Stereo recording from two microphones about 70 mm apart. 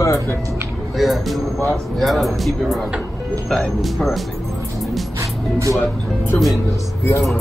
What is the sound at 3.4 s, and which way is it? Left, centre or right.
Speech, centre.